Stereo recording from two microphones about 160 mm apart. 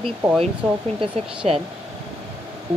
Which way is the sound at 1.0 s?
35° right (ahead or behind).